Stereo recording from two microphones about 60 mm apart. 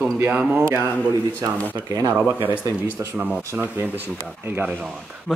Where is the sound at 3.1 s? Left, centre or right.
Right.